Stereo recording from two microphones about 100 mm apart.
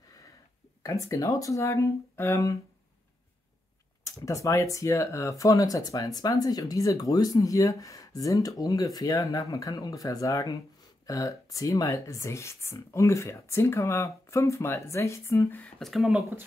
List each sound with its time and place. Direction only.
0.8 s speech: 35° left (ahead or behind)
4.0 s speech: 30° left (ahead or behind)
15.8 s speech: centre (ahead or behind)